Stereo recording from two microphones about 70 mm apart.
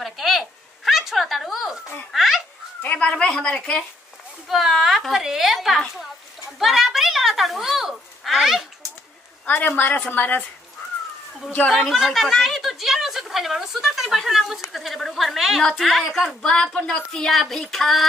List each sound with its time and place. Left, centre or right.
0.0 s a sound: centre
2.8 s speech: left
4.5 s a woman's voice: centre
6.6 s a sound: centre
9.5 s a woman's voice: left
11.7 s a woman's voice: centre